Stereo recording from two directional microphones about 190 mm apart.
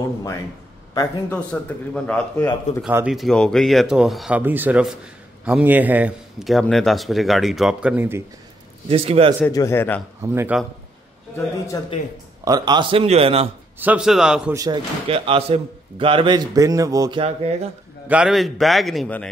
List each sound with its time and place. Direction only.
0.9 s a man's voice: 10° left (ahead or behind)
2.8 s a man's voice: 5° right (ahead or behind)
8.8 s speech: 30° right (ahead or behind)
9.5 s a man's voice: 15° left (ahead or behind)
10.2 s speech: 10° right (ahead or behind)
11.3 s a man's voice: 15° left (ahead or behind)
12.4 s a man's voice: 20° right (ahead or behind)
13.7 s a man's voice: 5° right (ahead or behind)
14.5 s a man's voice: 20° right (ahead or behind)
15.0 s a man's voice: 30° right (ahead or behind)
18.0 s a man's voice: 5° right (ahead or behind)